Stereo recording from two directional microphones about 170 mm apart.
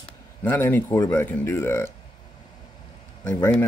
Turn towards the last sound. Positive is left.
turn(degrees=10)  # may be behind; listen again after turning